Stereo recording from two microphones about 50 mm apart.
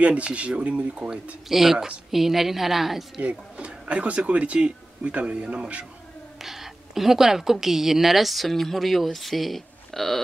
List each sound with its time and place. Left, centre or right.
0.0 s speech: right
1.1 s speech: centre
3.2 s speech: right
6.4 s speech: centre